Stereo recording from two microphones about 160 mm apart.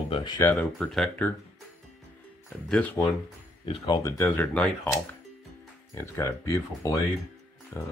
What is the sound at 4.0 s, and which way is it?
Speech, 15° left (ahead or behind).